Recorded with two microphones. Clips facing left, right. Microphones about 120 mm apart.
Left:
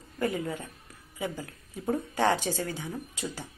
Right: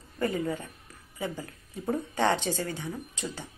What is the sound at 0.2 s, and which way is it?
A woman's voice, centre (ahead or behind).